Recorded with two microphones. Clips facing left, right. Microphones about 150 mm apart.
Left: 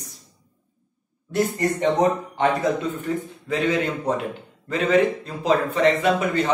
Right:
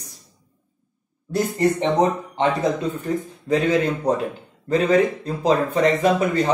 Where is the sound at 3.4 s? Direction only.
35° right (ahead or behind).